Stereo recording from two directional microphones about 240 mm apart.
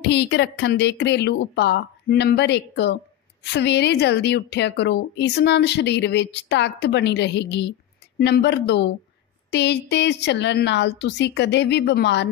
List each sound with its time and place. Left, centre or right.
0.0 s a woman's voice: left